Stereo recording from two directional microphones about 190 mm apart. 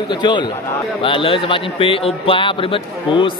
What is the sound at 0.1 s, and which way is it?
Speech, 25° left (ahead or behind).